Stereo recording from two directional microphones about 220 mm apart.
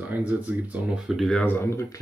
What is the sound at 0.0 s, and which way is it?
Speech, 5° right (ahead or behind).